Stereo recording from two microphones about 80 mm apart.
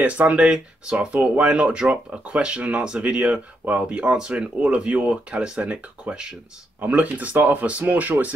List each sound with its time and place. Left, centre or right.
0.0 s speech: centre